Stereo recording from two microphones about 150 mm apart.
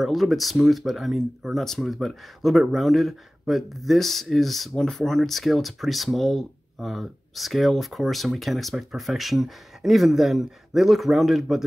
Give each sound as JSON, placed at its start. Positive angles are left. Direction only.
{"t": 0.0, "sound": "speech", "side_deg": 0}